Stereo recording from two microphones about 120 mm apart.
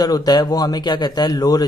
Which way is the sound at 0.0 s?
35° left (ahead or behind).